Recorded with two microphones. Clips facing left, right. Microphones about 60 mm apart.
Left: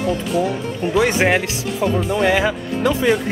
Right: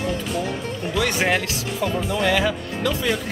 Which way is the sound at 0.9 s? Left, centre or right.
Left.